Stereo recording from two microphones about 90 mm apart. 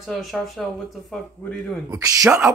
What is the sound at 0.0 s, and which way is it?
Speech, centre (ahead or behind).